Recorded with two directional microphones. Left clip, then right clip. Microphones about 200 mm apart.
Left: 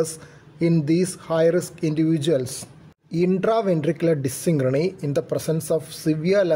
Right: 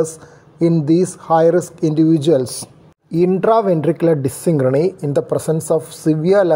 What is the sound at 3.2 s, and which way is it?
Speech, 5° right (ahead or behind).